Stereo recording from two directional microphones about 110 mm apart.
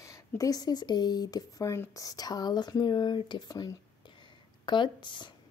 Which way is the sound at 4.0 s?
45° left (ahead or behind).